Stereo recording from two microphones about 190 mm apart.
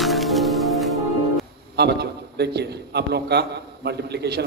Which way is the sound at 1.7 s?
60° right (ahead or behind).